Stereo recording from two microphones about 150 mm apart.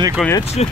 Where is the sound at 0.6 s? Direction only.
45° left (ahead or behind).